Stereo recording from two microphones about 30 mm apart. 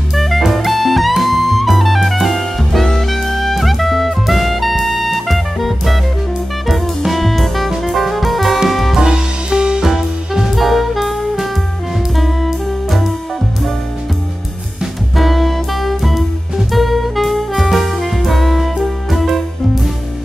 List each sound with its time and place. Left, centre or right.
0.1 s jazz: centre
0.4 s music: centre
8.9 s music: right
9.8 s music: centre
10.5 s saxophone: centre
12.2 s music: centre
15.1 s music: centre
16.7 s saxophone: centre